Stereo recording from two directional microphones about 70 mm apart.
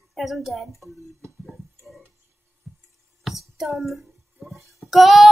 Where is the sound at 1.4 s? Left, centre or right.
Centre.